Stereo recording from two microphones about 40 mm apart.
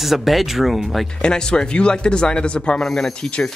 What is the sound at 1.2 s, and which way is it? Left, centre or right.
Speech, centre.